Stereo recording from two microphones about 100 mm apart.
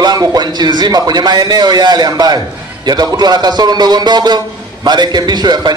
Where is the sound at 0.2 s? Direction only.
40° right (ahead or behind).